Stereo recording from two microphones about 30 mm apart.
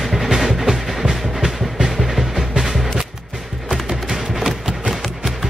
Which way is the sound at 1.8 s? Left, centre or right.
Centre.